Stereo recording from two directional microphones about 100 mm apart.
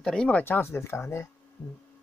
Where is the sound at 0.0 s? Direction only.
10° left (ahead or behind); by 1.2 s 25° left (ahead or behind).